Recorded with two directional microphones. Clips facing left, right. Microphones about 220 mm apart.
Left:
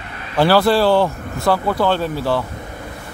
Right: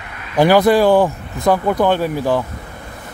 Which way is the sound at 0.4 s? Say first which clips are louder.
Right 2 dB; 15° right (ahead or behind).